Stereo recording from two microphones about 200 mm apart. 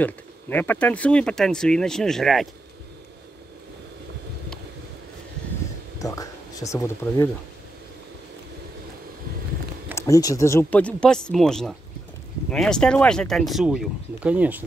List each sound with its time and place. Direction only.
0.0 s speech: 10° left (ahead or behind)
5.9 s a sound: 15° left (ahead or behind)
9.9 s speech: 15° left (ahead or behind); by 14.6 s 5° right (ahead or behind)